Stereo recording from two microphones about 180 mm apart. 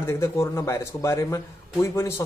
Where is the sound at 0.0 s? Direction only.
15° left (ahead or behind).